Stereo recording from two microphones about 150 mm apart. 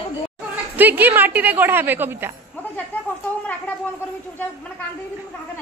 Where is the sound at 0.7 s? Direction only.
10° right (ahead or behind).